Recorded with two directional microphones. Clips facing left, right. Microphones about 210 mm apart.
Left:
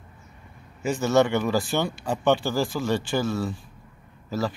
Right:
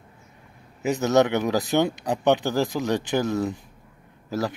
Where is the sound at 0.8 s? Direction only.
20° right (ahead or behind).